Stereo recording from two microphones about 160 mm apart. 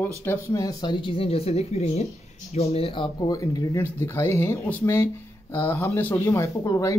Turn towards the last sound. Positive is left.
turn(degrees=20)  # may be behind; listen again after turning